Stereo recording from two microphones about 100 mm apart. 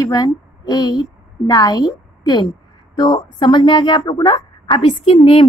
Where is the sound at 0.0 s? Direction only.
40° left (ahead or behind).